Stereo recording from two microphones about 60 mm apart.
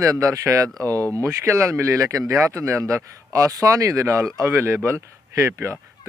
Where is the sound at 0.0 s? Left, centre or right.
Right.